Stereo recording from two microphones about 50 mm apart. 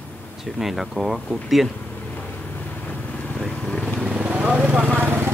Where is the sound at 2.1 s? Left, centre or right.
Left.